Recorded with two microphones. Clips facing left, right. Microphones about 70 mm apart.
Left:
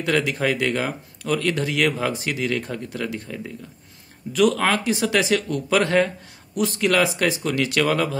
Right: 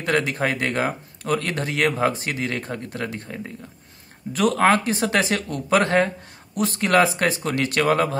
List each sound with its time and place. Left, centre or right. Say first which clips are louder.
0.0 s speech: even; right